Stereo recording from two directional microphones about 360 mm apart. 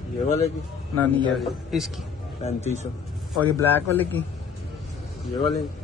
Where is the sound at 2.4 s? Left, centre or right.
Centre.